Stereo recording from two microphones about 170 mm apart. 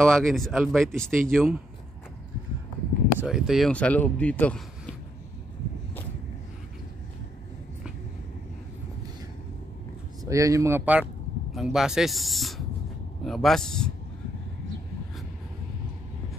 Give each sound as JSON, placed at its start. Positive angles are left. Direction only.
{"t": 0.0, "sound": "speech", "side_deg": 0}
{"t": 3.2, "sound": "speech", "side_deg": -5}
{"t": 10.2, "sound": "speech", "side_deg": -20}